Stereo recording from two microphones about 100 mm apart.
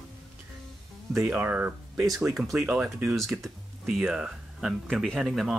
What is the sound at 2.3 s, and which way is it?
Speech, 5° right (ahead or behind).